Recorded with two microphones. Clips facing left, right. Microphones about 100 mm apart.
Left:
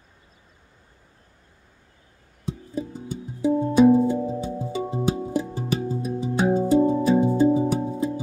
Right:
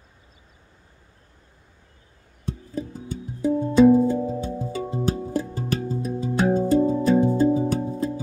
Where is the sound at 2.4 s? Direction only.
15° left (ahead or behind).